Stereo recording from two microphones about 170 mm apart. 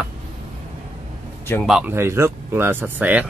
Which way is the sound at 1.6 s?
5° right (ahead or behind).